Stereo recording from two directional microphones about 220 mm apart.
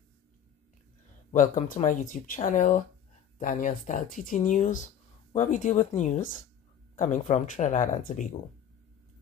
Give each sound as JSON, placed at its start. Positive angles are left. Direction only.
{"t": 1.3, "sound": "speech", "side_deg": 35}